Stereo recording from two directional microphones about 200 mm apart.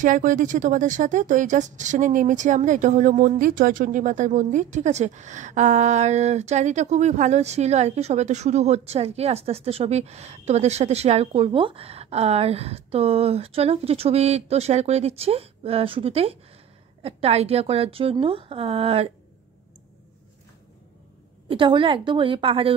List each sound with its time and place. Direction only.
0.0 s a woman's voice: 40° right (ahead or behind)
21.5 s a woman's voice: 25° right (ahead or behind)